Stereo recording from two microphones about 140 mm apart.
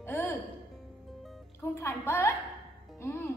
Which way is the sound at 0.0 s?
15° left (ahead or behind).